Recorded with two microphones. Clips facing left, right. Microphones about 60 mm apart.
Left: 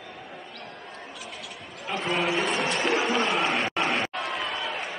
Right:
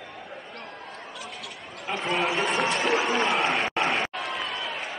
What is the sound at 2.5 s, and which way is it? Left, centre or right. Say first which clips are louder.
Music: right 2 dB; right.